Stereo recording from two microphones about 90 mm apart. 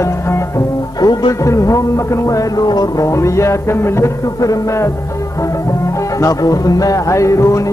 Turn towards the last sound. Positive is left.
turn(degrees=35)  # may be behind; listen again after turning